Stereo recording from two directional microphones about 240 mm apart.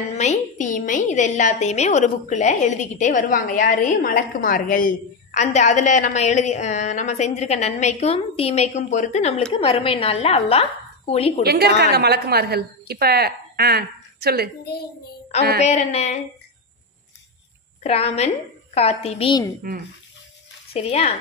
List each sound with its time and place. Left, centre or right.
0.2 s a woman's voice: left
11.4 s a woman's voice: right
15.6 s a woman's voice: left
17.8 s a woman's voice: left
20.7 s a woman's voice: left